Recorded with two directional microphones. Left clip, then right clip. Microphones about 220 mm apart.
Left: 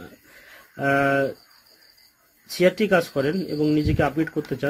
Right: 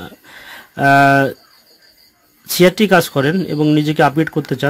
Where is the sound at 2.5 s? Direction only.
50° right (ahead or behind).